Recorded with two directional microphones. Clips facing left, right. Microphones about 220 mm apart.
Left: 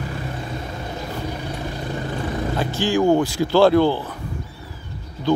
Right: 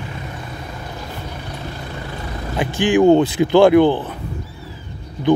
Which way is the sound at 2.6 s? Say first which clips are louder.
Right 6 dB; 15° right (ahead or behind).